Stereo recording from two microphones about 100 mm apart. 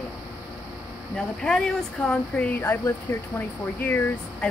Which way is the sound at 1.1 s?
5° left (ahead or behind).